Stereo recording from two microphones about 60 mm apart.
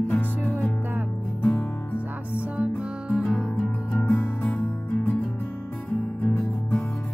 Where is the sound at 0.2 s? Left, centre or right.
Left.